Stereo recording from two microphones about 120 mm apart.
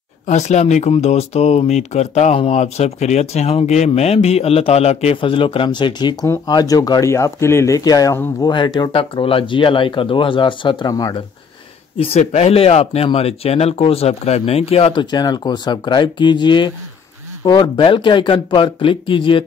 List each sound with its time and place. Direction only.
0.3 s speech: 75° left (ahead or behind); by 8.9 s 35° left (ahead or behind)
8.9 s speech: 50° left (ahead or behind)
12.0 s speech: 65° left (ahead or behind)
15.0 s speech: 35° left (ahead or behind)